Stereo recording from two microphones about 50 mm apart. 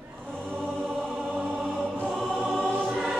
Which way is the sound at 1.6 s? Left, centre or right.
Centre.